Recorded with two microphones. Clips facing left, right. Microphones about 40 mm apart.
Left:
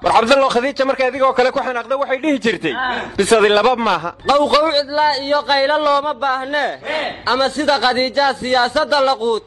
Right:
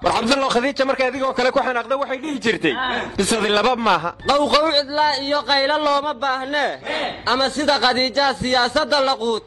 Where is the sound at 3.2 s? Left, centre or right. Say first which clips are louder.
Left 10 dB; left.